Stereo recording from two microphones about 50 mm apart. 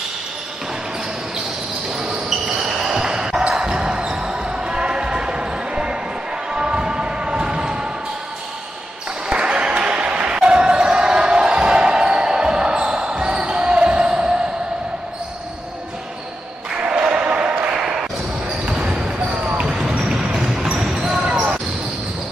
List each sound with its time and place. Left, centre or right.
2.0 s basketball bounce: centre
6.5 s a sound: centre
9.3 s basketball bounce: centre
16.7 s basketball bounce: right
19.1 s basketball bounce: right
20.3 s a sound: centre
20.8 s basketball bounce: centre
21.3 s basketball bounce: right